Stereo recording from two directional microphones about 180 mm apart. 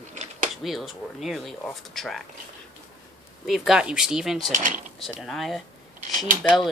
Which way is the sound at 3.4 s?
Centre (ahead or behind).